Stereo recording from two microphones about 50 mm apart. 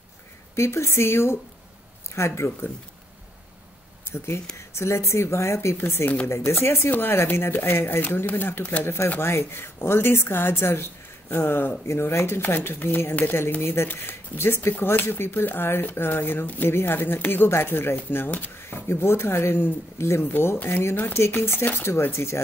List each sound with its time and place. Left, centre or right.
0.6 s speech: left
4.6 s a woman's voice: left
8.8 s a woman's voice: left
11.9 s a woman's voice: left
18.9 s a woman's voice: left
21.1 s speech: left
22.1 s a woman's voice: left